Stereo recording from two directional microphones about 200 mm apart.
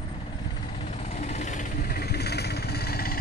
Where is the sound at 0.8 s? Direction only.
35° left (ahead or behind).